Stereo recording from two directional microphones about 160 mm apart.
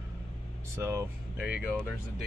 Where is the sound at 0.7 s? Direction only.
15° right (ahead or behind).